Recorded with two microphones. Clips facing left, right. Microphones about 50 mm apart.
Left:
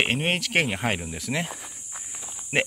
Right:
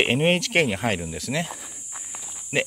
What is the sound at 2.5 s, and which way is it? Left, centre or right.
Speech, left.